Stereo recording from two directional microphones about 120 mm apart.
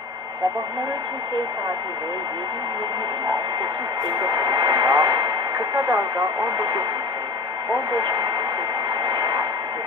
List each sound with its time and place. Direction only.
4.2 s speech: 35° right (ahead or behind)
6.4 s speech: 40° right (ahead or behind)
7.9 s speech: 40° right (ahead or behind)
9.0 s vehicle: 40° right (ahead or behind)